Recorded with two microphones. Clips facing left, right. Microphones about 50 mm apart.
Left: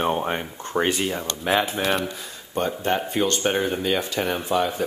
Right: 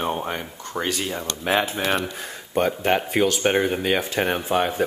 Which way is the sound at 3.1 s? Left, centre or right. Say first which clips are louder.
Right 2 dB; right.